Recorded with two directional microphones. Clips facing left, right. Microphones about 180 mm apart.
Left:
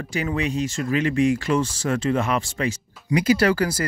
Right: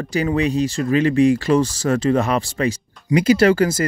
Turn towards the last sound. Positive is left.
turn(degrees=-25)  # may be behind; listen again after turning